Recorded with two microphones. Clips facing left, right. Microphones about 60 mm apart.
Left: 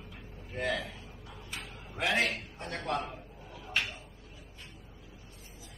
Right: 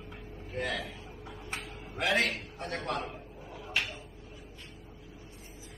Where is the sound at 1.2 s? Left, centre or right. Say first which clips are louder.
Right 4 dB; right.